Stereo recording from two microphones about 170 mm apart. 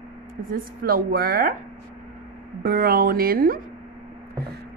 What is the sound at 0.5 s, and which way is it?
A woman's voice, 60° right (ahead or behind).